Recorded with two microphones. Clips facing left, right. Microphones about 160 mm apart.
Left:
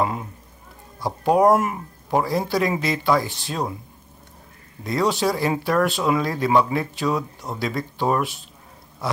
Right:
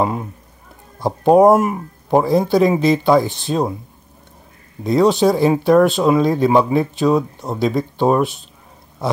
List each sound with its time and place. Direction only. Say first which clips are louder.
0.0 s speech: right 4 dB; 25° right (ahead or behind)
4.8 s speech: right 8 dB; 20° right (ahead or behind)